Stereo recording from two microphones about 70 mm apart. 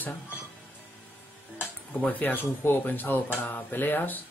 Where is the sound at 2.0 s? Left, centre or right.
Left.